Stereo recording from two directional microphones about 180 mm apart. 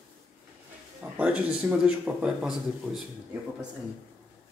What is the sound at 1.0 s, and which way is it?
Speech, 10° right (ahead or behind).